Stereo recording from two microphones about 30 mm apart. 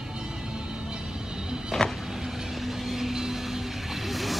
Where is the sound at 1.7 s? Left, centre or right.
Left.